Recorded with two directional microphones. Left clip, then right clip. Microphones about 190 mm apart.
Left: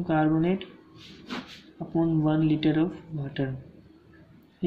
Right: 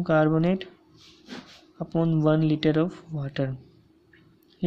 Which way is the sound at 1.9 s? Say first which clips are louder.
Right 2 dB; 40° right (ahead or behind).